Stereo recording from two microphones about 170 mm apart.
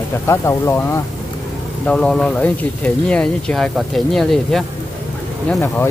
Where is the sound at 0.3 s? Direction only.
15° left (ahead or behind).